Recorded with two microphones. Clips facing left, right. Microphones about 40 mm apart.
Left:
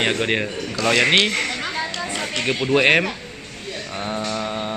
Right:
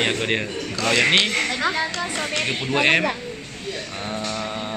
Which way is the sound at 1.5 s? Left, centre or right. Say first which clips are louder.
Right 3 dB; right.